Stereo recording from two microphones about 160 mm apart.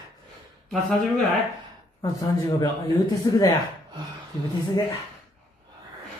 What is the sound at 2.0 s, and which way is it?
Speech, 20° left (ahead or behind).